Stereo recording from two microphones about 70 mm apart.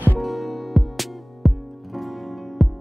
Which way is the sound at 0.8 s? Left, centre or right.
Centre.